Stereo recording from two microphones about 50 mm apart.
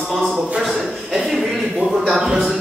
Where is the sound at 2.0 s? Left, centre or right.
Centre.